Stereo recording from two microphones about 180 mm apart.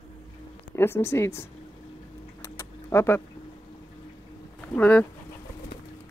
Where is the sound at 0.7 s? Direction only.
15° left (ahead or behind).